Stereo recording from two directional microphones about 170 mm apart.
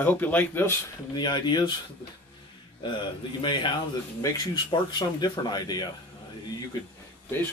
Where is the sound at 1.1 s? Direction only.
25° left (ahead or behind).